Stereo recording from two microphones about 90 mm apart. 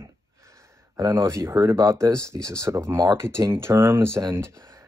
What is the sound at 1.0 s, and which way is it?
Speech, 35° right (ahead or behind).